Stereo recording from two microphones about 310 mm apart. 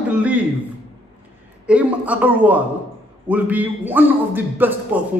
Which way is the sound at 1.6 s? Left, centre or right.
Centre.